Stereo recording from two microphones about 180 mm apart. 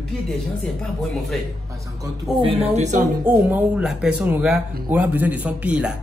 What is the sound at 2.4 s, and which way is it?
Speech, 35° right (ahead or behind).